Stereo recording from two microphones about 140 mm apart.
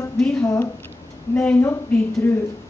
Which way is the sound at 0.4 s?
20° left (ahead or behind).